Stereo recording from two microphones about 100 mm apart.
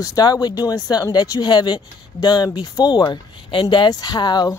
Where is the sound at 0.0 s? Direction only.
40° left (ahead or behind).